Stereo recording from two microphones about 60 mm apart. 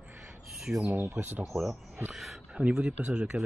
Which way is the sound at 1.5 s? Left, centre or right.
Centre.